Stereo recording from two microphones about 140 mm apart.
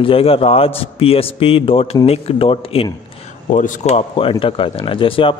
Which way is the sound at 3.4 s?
65° left (ahead or behind).